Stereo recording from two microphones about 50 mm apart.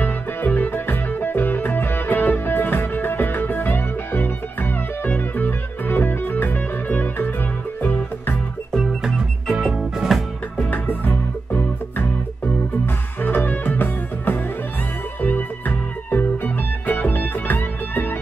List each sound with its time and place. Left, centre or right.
0.0 s music: left
9.0 s organ: centre
9.7 s music: centre
10.7 s music: left